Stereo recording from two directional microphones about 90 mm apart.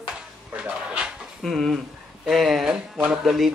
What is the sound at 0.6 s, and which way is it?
Speech, 10° right (ahead or behind).